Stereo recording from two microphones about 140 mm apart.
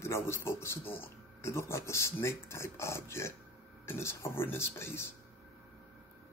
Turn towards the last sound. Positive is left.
turn(degrees=15)  # may be behind; listen again after turning